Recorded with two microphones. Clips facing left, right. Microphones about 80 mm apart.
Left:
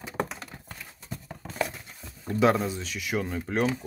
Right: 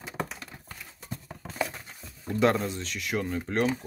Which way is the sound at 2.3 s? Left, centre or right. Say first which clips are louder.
Left 1 dB; centre.